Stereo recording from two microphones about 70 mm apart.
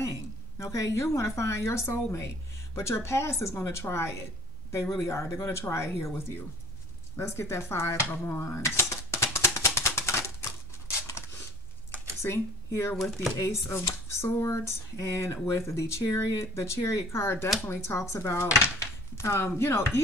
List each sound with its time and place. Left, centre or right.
0.6 s speech: left
8.1 s a sound: left
9.8 s typewriter: left
11.1 s a sound: left
12.2 s speech: left
12.9 s speech: centre
13.4 s speech: left